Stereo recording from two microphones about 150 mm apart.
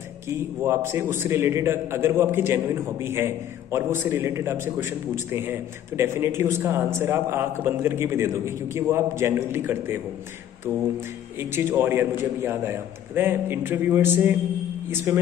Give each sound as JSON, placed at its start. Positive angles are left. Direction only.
{"t": 0.7, "sound": "a man's voice", "side_deg": -15}